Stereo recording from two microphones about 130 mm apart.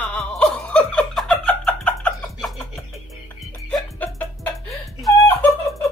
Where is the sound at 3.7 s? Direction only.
5° left (ahead or behind).